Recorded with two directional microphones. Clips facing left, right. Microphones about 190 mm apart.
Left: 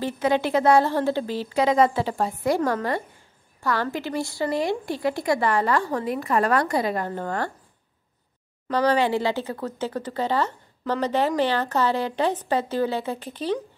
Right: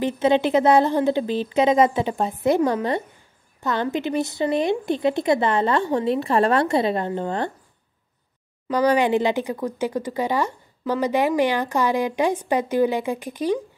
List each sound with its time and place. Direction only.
0.0 s speech: 20° right (ahead or behind)
8.6 s speech: 10° right (ahead or behind)